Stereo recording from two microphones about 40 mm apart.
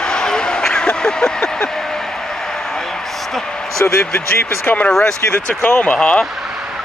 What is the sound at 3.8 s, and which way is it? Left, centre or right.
Speech, left.